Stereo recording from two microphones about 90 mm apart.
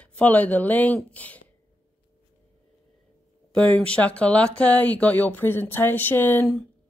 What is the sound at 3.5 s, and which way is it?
Speech, 15° left (ahead or behind).